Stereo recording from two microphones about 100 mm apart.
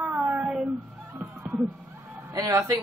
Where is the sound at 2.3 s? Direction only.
35° right (ahead or behind).